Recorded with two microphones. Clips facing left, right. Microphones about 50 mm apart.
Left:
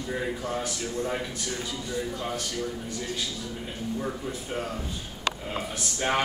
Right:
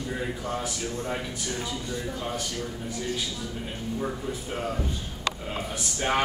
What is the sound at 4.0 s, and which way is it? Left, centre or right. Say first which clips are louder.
Speech: right 1 dB; centre.